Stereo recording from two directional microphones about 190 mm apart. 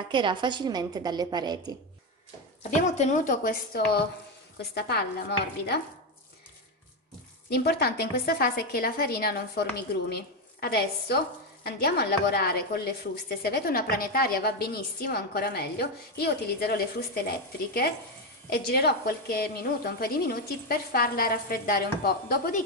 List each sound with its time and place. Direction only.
0.1 s a woman's voice: 25° right (ahead or behind)
3.0 s a woman's voice: 40° left (ahead or behind)
4.6 s a woman's voice: 55° left (ahead or behind)
7.4 s a woman's voice: 60° left (ahead or behind)